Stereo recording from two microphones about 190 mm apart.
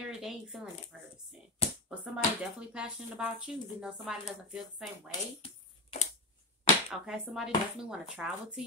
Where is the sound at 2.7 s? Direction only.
5° right (ahead or behind).